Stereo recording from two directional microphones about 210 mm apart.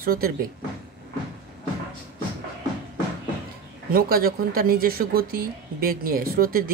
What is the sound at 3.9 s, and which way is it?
Speech, 45° right (ahead or behind).